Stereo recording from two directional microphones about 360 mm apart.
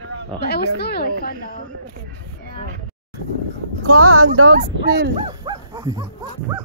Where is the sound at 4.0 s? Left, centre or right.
Right.